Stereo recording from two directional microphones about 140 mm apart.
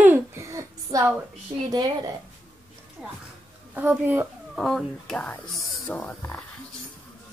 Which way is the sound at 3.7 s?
10° right (ahead or behind).